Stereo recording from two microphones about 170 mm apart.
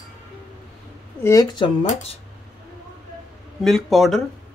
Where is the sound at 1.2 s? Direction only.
20° left (ahead or behind).